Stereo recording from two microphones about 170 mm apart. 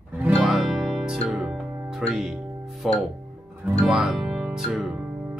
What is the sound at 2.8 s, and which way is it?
Speech, centre (ahead or behind).